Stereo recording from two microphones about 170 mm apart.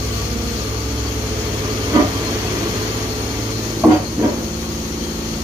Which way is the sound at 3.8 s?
15° right (ahead or behind).